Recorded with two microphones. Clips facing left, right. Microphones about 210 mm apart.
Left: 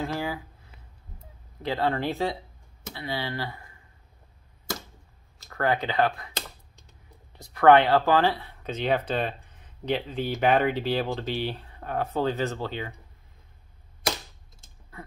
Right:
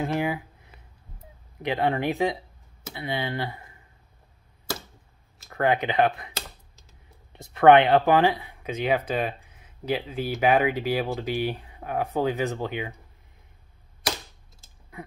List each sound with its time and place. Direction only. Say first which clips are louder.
0.0 s speech: right 4 dB; 20° right (ahead or behind)
1.6 s speech: right 2 dB; 20° right (ahead or behind)
5.5 s speech: right 2 dB; 20° right (ahead or behind)
7.3 s speech: right 2 dB; 20° right (ahead or behind)